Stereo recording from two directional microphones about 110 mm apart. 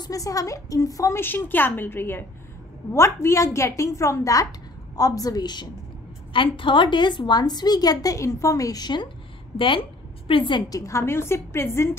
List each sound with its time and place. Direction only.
0.0 s a woman's voice: 30° left (ahead or behind)
1.2 s a woman's voice: 20° left (ahead or behind); by 5.7 s 40° left (ahead or behind)
6.3 s a woman's voice: 50° left (ahead or behind)
9.6 s a woman's voice: 50° left (ahead or behind)
10.7 s a woman's voice: 25° left (ahead or behind)